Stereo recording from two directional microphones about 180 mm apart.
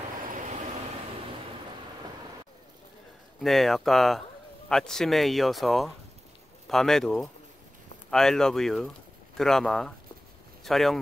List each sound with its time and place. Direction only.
0.2 s vehicle: 45° right (ahead or behind)
3.3 s speech: centre (ahead or behind)